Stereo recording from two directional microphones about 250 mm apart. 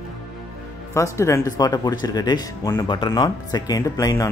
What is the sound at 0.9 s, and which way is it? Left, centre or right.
Speech, centre.